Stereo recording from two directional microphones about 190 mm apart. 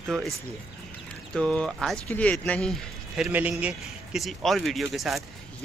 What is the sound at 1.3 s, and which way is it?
Speech, 5° left (ahead or behind).